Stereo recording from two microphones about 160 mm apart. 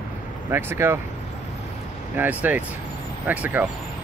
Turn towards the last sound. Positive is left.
turn(degrees=-10)  # may be behind; listen again after turning